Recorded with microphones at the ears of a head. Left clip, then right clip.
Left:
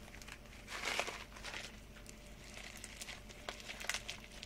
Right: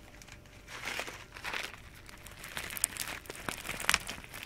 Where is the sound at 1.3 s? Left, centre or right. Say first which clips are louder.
Right 9 dB; right.